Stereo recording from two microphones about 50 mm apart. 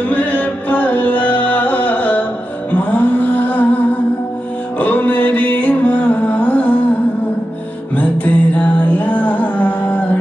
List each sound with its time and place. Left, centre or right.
0.1 s music: left
7.9 s music: left